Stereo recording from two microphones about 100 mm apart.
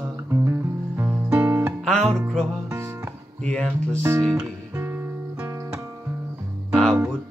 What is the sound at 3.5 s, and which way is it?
Speech, 10° left (ahead or behind).